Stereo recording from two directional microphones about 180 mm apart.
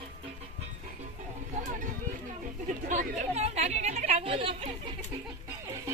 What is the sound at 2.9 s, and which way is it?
Speech, 40° right (ahead or behind).